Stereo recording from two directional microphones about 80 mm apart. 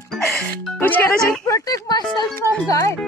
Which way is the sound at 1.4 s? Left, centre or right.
Left.